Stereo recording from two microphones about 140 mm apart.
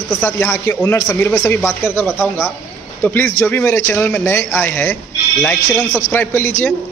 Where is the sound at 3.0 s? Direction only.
15° left (ahead or behind).